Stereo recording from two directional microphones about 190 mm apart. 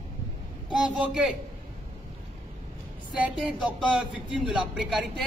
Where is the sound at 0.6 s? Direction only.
5° right (ahead or behind).